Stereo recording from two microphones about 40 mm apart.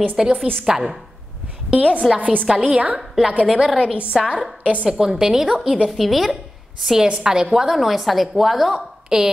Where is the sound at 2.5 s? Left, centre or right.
Centre.